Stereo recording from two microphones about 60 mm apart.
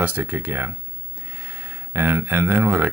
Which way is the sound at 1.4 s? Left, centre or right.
Right.